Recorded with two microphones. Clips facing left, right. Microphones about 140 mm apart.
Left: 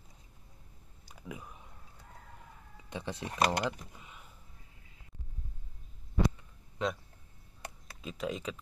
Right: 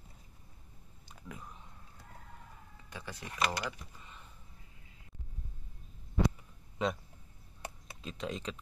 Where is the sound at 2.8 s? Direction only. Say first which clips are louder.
Left 7 dB; 25° left (ahead or behind).